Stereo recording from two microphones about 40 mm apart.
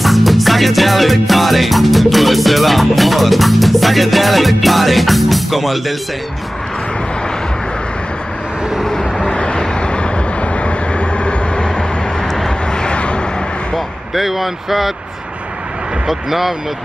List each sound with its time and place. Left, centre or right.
0.0 s music: centre
8.8 s vehicle: centre
12.3 s vehicle: centre
12.6 s vehicle: left
13.7 s speech: centre
16.1 s speech: centre